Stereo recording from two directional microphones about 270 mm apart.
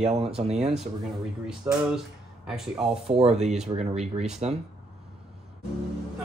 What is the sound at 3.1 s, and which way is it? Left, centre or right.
Speech, right.